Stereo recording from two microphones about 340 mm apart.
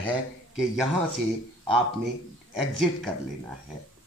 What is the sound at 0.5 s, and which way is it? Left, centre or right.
Speech, centre.